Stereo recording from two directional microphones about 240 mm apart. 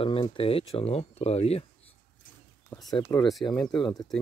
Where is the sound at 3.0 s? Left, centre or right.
Centre.